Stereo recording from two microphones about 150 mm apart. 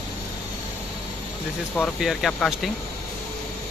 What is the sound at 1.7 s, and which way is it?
Speech, 5° left (ahead or behind).